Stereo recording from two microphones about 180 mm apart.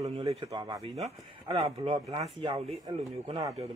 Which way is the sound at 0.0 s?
35° right (ahead or behind).